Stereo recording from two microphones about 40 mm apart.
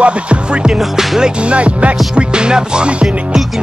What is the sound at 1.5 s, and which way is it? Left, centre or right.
Music, right.